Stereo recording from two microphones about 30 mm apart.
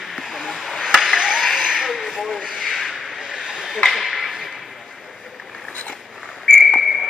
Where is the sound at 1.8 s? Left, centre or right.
Centre.